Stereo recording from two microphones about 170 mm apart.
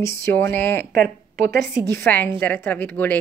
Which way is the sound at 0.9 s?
60° right (ahead or behind).